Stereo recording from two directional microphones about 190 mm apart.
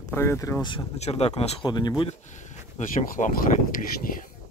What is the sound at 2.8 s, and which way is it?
Speech, 40° left (ahead or behind).